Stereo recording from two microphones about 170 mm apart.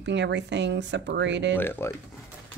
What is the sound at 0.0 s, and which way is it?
Speech, 90° right.